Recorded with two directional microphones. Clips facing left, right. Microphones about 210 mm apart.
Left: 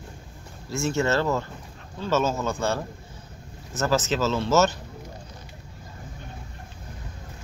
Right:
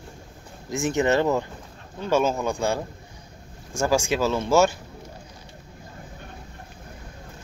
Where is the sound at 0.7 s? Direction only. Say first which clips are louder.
Right 2 dB; 15° right (ahead or behind).